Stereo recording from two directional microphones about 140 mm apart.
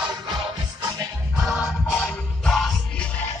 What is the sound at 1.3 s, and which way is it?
Music, 5° right (ahead or behind).